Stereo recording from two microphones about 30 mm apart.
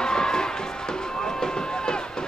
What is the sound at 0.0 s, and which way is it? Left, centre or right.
Crowd, left.